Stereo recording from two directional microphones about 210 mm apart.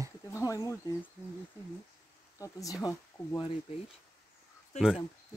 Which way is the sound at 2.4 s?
15° left (ahead or behind).